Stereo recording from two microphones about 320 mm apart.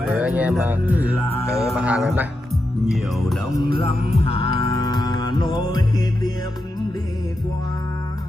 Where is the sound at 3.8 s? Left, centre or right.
Centre.